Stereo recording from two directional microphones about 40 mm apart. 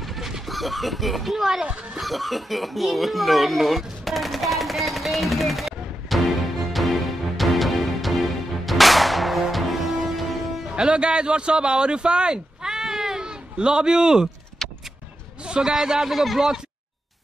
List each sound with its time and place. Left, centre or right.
0.0 s chicken: centre
0.5 s speech: centre
1.6 s speech: right
2.0 s a sound: centre
9.4 s music: centre
10.7 s speech: right
14.6 s vehicle: centre
15.4 s a sound: right
15.7 s speech: centre